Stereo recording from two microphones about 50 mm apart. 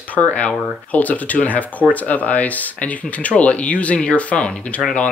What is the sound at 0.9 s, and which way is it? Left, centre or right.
Speech, left.